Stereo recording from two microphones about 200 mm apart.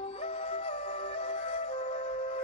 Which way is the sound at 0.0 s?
30° left (ahead or behind).